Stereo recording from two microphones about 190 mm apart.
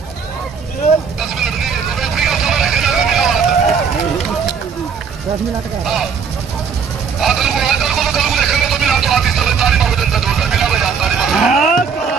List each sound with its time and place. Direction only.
1.2 s vehicle: centre (ahead or behind)
7.2 s vehicle: centre (ahead or behind)